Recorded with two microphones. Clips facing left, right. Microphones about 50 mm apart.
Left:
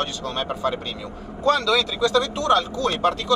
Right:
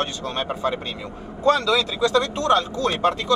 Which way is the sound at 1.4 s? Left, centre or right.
Right.